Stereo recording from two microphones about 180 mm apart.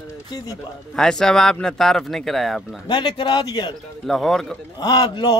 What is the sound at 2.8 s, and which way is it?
Speech, 25° left (ahead or behind).